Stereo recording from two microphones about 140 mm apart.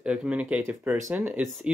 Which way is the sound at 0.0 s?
5° right (ahead or behind).